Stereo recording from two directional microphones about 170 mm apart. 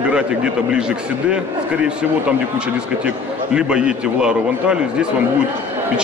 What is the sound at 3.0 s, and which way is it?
Speech, 5° right (ahead or behind).